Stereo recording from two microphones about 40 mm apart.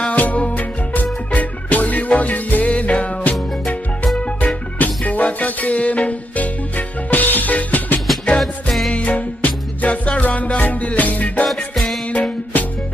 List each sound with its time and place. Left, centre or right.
0.1 s music: left
4.7 s music: left
7.1 s music: left
8.4 s music: centre
8.9 s music: left
11.4 s music: centre
12.1 s music: left